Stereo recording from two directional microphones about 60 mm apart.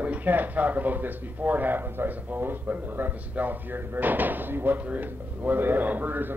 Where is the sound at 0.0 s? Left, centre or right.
Right.